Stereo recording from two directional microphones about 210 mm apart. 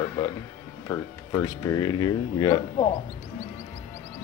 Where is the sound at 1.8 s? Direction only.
20° left (ahead or behind).